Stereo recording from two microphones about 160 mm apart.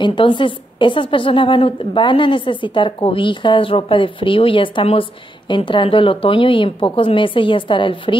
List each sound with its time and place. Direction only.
0.0 s a woman's voice: 30° left (ahead or behind)